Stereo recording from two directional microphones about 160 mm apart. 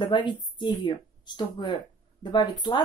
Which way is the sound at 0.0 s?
30° left (ahead or behind).